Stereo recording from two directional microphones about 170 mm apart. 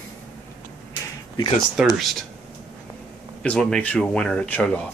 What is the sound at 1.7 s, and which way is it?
Speech, centre (ahead or behind).